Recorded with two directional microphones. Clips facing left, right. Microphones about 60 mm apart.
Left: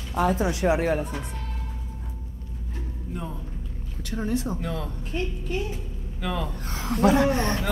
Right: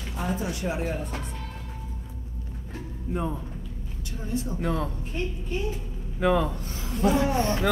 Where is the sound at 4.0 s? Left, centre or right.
Left.